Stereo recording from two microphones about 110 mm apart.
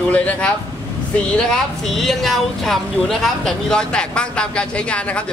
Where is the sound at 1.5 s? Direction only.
5° left (ahead or behind).